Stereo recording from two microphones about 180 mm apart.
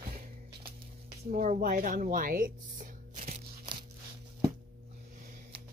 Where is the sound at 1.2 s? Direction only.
50° right (ahead or behind).